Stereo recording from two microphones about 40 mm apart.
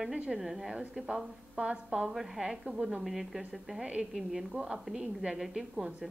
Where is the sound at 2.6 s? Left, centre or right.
Right.